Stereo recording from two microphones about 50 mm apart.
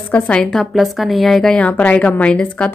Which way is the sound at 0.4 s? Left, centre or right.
Centre.